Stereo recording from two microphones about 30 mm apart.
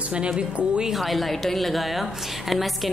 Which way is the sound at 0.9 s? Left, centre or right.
Centre.